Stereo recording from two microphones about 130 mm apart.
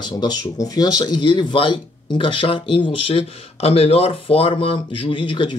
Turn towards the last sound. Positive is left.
turn(degrees=40)  # may be behind; listen again after turning